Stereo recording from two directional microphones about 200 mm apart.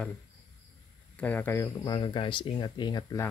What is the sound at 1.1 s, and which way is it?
Speech, 10° left (ahead or behind).